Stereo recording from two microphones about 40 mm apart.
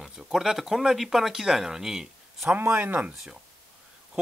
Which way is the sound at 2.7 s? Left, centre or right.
Right.